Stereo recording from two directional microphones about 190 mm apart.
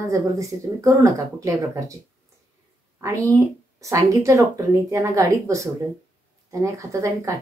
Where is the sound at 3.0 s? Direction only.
15° right (ahead or behind).